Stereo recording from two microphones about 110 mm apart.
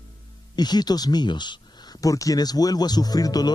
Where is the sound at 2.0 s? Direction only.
30° left (ahead or behind).